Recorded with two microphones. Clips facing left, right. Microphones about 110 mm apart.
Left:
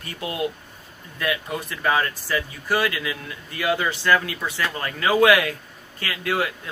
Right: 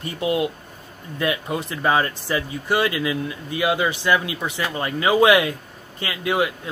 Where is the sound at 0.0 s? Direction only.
20° right (ahead or behind).